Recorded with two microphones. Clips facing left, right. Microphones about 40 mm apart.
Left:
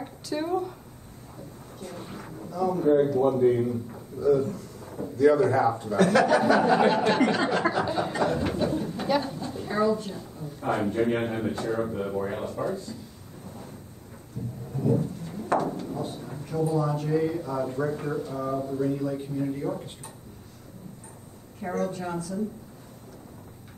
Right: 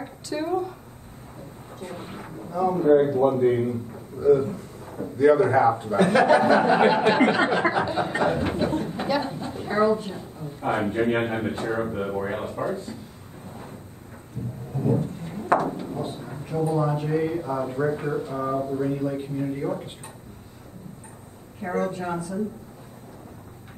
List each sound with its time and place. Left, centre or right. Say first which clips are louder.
0.0 s speech: right 1 dB; centre
1.8 s a man's voice: right 3 dB; right
14.7 s a sound: right 1 dB; centre
15.1 s speech: right 4 dB; right
21.7 s a man's voice: right 3 dB; right